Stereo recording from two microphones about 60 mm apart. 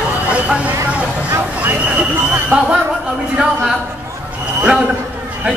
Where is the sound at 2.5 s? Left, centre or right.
Right.